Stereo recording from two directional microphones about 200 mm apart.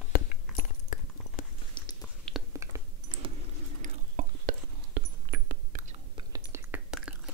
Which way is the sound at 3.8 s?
40° right (ahead or behind).